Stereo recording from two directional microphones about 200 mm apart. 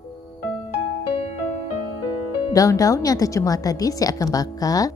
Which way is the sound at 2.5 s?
15° left (ahead or behind).